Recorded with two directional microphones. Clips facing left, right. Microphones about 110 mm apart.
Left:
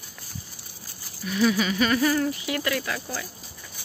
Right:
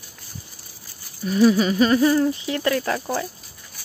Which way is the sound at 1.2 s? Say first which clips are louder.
Right 6 dB; 35° right (ahead or behind).